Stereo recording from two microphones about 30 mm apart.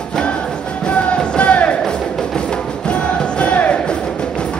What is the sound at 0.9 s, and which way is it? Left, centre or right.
Music, left.